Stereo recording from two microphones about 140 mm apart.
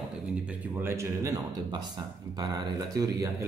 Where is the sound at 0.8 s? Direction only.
20° right (ahead or behind).